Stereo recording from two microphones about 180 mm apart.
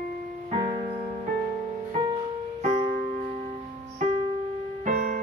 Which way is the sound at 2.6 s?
35° right (ahead or behind).